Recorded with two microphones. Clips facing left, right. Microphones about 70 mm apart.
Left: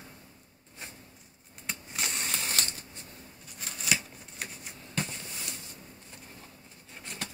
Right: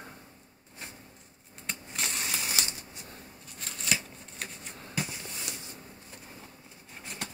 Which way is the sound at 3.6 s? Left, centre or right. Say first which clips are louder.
Left 1 dB; centre.